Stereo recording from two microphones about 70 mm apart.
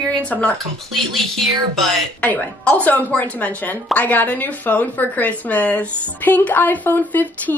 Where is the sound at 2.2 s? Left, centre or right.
Left.